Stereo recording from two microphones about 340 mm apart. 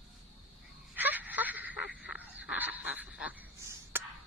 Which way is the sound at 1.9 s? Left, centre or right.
Centre.